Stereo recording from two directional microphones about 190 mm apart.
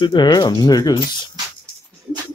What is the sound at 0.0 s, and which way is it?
Speech, 25° left (ahead or behind).